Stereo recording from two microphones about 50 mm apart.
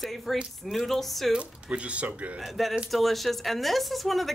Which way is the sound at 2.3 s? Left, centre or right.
Centre.